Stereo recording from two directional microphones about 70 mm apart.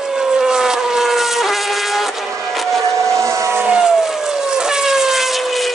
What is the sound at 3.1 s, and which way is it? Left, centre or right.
Vehicle, right.